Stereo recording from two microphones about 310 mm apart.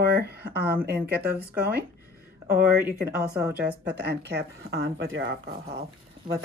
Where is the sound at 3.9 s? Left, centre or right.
Right.